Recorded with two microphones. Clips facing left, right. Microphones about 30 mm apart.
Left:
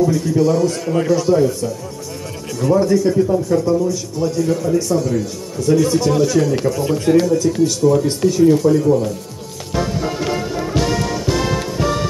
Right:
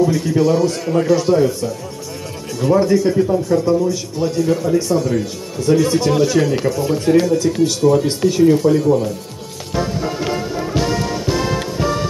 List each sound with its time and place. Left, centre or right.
0.0 s a man's voice: right
6.7 s speech: centre
7.2 s a man's voice: centre
9.8 s music: centre